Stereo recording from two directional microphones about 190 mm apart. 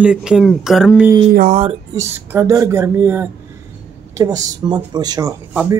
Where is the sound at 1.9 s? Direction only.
15° right (ahead or behind).